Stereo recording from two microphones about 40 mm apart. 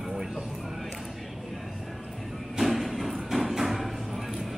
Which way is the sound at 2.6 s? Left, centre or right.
Centre.